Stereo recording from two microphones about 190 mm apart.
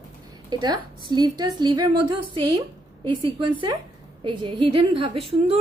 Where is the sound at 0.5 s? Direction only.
25° right (ahead or behind).